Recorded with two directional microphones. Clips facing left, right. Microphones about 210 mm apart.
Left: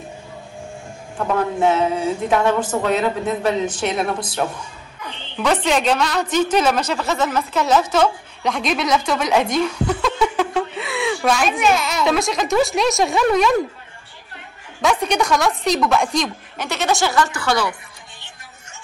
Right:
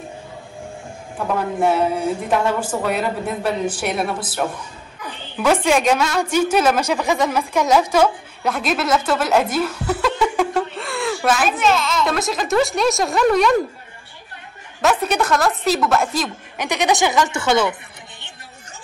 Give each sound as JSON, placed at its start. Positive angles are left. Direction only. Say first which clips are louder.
{"t": 1.1, "sound": "a woman's voice", "louder": "left 1 dB", "side_deg": -10}
{"t": 9.8, "sound": "a sound", "louder": "even", "side_deg": -10}
{"t": 12.0, "sound": "speech", "louder": "left 2 dB", "side_deg": 0}
{"t": 14.8, "sound": "speech", "louder": "even", "side_deg": -5}
{"t": 16.5, "sound": "a woman's voice", "louder": "right 2 dB", "side_deg": -15}